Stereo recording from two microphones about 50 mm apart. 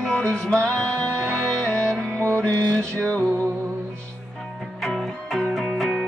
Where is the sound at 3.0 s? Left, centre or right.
Left.